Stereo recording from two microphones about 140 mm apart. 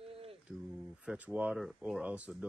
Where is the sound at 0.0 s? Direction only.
45° right (ahead or behind).